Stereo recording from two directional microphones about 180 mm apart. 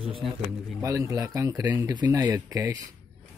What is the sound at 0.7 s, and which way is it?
Speech, 15° right (ahead or behind).